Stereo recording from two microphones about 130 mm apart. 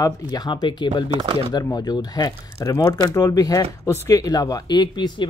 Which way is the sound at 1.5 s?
30° left (ahead or behind).